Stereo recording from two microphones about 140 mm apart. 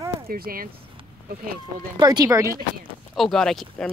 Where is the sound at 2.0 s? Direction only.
25° right (ahead or behind).